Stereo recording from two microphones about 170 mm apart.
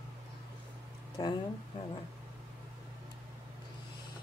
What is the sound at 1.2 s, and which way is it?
Speech, 25° left (ahead or behind).